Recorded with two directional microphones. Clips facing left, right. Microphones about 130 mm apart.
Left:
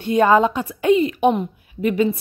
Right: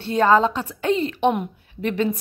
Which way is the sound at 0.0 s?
15° left (ahead or behind).